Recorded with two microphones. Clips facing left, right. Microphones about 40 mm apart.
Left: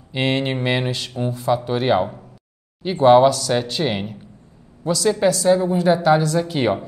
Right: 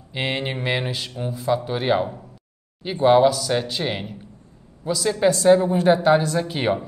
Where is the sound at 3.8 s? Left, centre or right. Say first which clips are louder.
Left 4 dB; centre.